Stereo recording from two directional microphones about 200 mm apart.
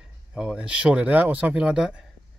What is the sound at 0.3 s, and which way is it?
Speech, 5° right (ahead or behind).